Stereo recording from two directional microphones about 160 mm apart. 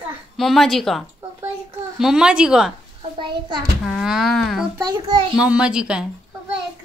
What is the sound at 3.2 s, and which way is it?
Speech, 30° right (ahead or behind).